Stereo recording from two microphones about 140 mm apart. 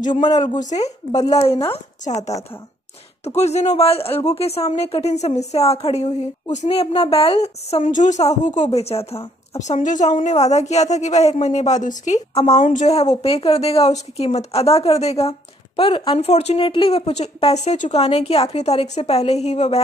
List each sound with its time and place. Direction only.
0.1 s a woman's voice: 35° left (ahead or behind)
0.6 s speech: 60° left (ahead or behind)
0.8 s speech: 25° left (ahead or behind)
1.3 s a woman's voice: 50° left (ahead or behind)
3.3 s a woman's voice: 50° left (ahead or behind)